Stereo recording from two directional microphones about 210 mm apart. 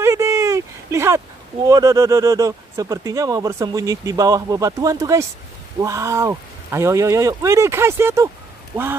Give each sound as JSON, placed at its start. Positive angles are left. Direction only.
{"t": 0.0, "sound": "speech", "side_deg": -15}